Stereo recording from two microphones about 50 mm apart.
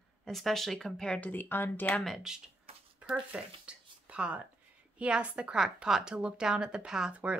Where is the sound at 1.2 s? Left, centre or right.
Left.